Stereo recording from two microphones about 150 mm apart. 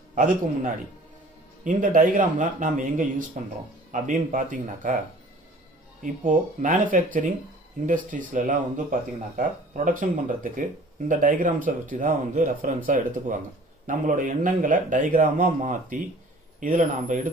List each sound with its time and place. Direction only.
0.1 s speech: 60° right (ahead or behind)
6.2 s speech: 60° right (ahead or behind)